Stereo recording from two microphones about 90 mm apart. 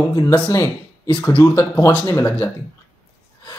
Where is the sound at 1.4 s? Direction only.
30° left (ahead or behind).